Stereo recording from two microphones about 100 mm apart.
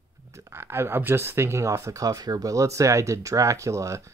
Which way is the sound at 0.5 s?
25° right (ahead or behind).